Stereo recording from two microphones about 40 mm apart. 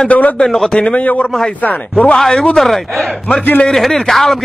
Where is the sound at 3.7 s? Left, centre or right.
Centre.